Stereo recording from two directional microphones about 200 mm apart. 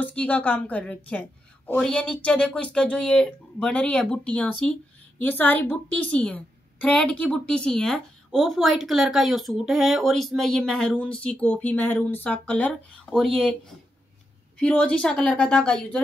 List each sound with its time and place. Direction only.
0.0 s a woman's voice: 5° left (ahead or behind)
14.6 s a woman's voice: 5° left (ahead or behind)